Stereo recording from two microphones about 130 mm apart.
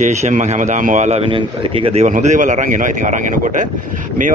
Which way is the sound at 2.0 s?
65° right (ahead or behind).